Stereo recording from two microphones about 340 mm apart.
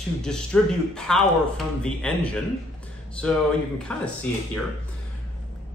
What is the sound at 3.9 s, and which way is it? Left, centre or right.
Speech, centre.